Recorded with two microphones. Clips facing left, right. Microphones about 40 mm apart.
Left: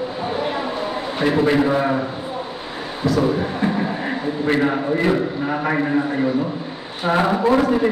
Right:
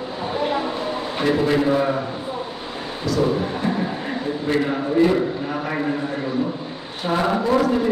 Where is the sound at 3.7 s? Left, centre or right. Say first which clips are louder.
Left 1 dB; centre.